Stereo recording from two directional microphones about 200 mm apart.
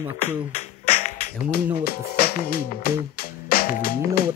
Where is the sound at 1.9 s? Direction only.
50° left (ahead or behind).